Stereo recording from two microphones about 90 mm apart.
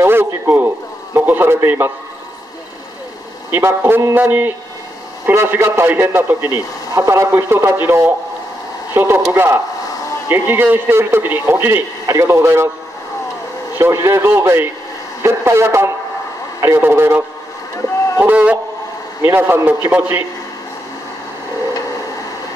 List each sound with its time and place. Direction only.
0.0 s a man's voice: 25° right (ahead or behind)
3.5 s a man's voice: 25° right (ahead or behind)
13.7 s a man's voice: 30° right (ahead or behind)
18.2 s a man's voice: 15° right (ahead or behind)